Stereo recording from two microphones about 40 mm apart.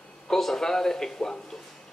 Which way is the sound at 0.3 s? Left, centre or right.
Centre.